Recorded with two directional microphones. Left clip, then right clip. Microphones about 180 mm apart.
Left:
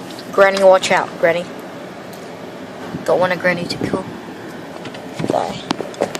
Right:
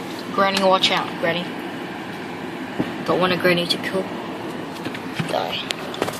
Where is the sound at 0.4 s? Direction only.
15° left (ahead or behind).